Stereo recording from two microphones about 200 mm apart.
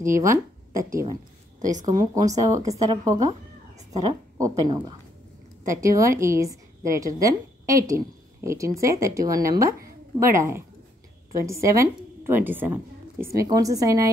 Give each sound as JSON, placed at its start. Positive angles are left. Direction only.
{"t": 0.0, "sound": "speech", "side_deg": -15}
{"t": 1.6, "sound": "a woman's voice", "side_deg": -40}
{"t": 1.9, "sound": "a woman's voice", "side_deg": -20}